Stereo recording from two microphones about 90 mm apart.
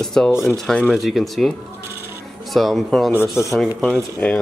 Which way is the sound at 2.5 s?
Centre (ahead or behind).